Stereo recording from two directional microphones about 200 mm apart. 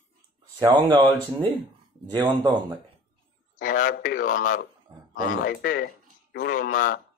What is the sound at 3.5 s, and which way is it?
A man's voice, 45° left (ahead or behind).